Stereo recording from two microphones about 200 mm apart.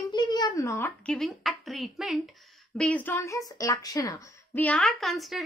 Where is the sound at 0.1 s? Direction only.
20° left (ahead or behind).